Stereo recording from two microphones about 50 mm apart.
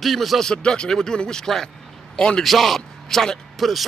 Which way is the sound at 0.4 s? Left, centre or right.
Centre.